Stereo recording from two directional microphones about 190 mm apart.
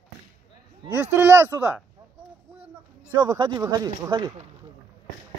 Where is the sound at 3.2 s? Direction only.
25° right (ahead or behind).